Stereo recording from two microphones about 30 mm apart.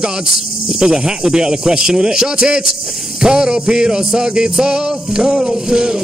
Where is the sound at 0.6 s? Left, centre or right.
Right.